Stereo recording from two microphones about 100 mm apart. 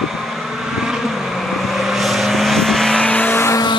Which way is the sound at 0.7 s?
5° right (ahead or behind).